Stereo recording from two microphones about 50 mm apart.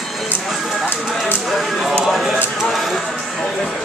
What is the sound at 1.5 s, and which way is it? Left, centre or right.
Speech, centre.